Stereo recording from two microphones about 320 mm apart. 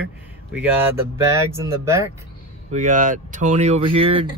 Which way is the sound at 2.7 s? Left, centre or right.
Right.